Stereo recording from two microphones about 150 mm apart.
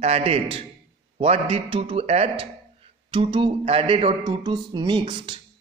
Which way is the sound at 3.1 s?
35° right (ahead or behind).